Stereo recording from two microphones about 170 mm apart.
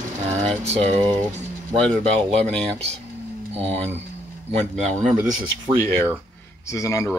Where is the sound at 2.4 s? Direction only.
10° left (ahead or behind).